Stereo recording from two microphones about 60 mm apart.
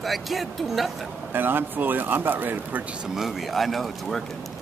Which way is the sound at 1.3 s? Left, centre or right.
Right.